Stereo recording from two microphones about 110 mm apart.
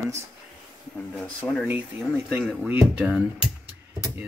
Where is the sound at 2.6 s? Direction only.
15° right (ahead or behind).